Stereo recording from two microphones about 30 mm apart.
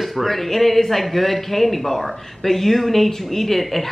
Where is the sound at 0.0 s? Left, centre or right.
Centre.